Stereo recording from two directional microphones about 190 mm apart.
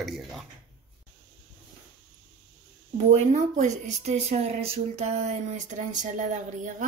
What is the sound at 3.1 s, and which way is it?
Speech, 40° right (ahead or behind).